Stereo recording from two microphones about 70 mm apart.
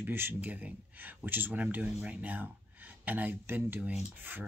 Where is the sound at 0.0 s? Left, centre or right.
Right.